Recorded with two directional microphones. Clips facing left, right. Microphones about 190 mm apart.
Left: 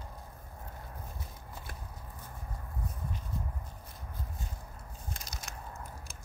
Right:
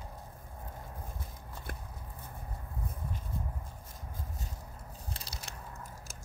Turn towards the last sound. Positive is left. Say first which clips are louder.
# even
turn(degrees=-30)  # may be behind; listen again after turning